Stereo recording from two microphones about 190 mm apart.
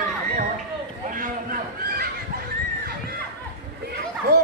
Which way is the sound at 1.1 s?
45° right (ahead or behind).